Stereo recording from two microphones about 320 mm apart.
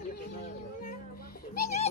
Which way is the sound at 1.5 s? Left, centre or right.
Left.